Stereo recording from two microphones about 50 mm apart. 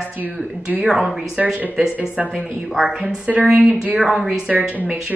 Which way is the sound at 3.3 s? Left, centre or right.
Right.